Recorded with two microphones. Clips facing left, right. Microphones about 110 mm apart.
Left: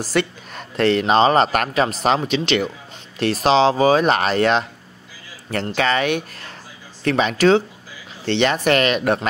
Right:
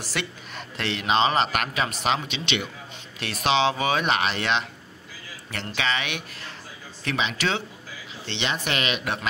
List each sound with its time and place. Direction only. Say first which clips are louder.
0.0 s speech: left 11 dB; 45° left (ahead or behind)
5.8 s speech: left 8 dB; 45° left (ahead or behind)